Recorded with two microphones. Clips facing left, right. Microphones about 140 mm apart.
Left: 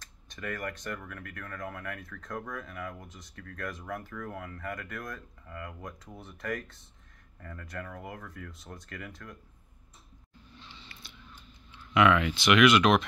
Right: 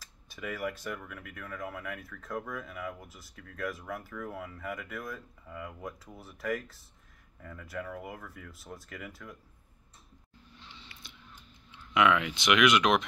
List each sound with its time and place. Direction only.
0.0 s speech: 5° right (ahead or behind)
10.9 s scissors: 20° right (ahead or behind)
11.9 s speech: 10° right (ahead or behind)